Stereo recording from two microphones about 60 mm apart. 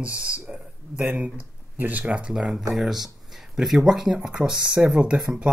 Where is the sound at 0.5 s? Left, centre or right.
Right.